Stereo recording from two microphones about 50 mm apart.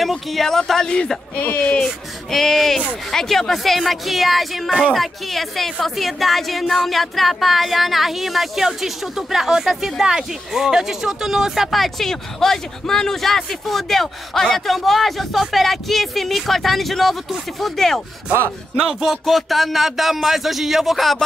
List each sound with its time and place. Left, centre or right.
0.0 s speech: centre
1.4 s speech: left
2.3 s speech: centre
19.2 s speech: centre